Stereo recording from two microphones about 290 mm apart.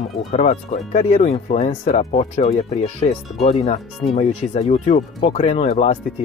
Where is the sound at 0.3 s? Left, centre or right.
Left.